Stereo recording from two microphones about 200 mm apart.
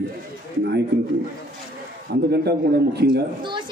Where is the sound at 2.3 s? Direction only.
55° right (ahead or behind).